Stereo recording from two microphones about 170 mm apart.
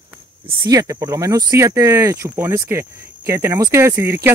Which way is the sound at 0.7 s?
20° right (ahead or behind).